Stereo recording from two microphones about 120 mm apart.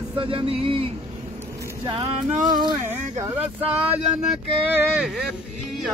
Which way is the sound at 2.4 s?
35° right (ahead or behind).